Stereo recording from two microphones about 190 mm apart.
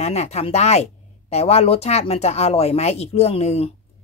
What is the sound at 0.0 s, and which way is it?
Speech, 35° left (ahead or behind).